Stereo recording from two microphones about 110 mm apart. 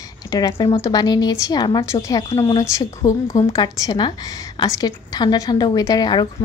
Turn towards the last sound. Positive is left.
turn(degrees=40)  # may be behind; listen again after turning